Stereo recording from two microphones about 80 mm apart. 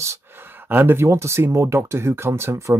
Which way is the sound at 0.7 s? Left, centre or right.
Right.